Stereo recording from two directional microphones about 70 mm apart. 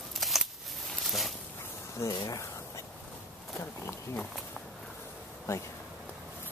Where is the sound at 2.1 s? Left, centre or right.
Left.